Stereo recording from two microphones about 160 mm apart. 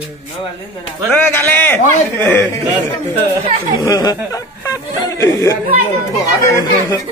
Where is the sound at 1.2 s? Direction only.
15° left (ahead or behind).